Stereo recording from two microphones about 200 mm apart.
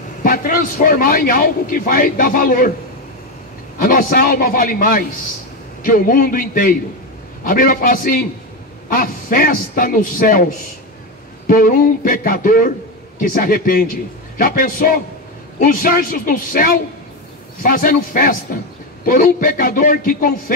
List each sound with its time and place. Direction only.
0.2 s a man's voice: 45° left (ahead or behind)
3.7 s a man's voice: 45° left (ahead or behind)